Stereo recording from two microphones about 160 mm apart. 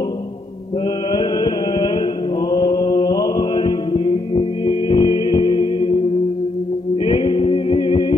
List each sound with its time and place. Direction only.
1.1 s music: 30° left (ahead or behind)
2.5 s mantra: 25° left (ahead or behind)
7.1 s a capella: 35° left (ahead or behind)